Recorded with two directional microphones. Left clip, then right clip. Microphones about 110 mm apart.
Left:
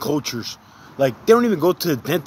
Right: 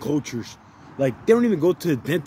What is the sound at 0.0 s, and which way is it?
Speech, 25° right (ahead or behind).